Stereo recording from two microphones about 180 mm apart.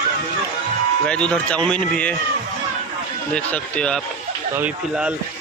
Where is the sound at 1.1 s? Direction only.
5° left (ahead or behind).